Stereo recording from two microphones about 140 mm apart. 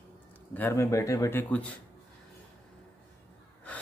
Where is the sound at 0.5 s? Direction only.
20° left (ahead or behind).